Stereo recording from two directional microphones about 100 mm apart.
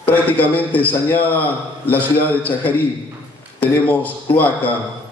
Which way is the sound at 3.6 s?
15° left (ahead or behind).